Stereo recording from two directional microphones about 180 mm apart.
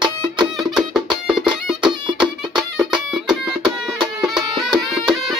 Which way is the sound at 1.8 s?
25° right (ahead or behind).